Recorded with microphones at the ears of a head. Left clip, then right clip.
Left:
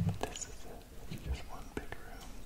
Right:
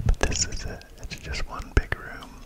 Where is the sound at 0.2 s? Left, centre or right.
Right.